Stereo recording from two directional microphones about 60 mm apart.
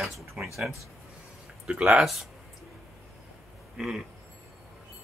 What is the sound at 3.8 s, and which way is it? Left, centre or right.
Speech, centre.